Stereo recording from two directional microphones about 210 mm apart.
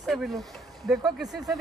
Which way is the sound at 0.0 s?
Centre (ahead or behind).